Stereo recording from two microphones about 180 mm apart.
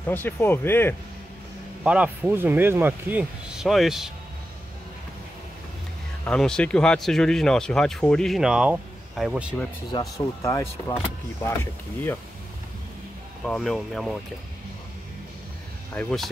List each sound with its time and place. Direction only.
0.0 s speech: 10° left (ahead or behind)
1.8 s speech: 5° right (ahead or behind)
6.2 s speech: 5° left (ahead or behind)
9.9 s speech: 20° left (ahead or behind)
13.4 s speech: centre (ahead or behind)
15.9 s speech: 5° left (ahead or behind)